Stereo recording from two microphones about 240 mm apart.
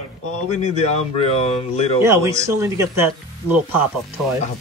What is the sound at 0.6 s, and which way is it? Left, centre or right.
Speech, left.